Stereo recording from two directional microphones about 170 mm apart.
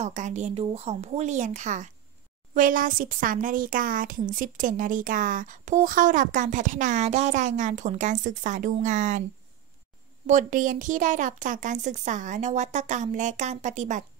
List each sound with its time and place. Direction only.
0.0 s speech: 45° right (ahead or behind)
10.2 s speech: 50° right (ahead or behind)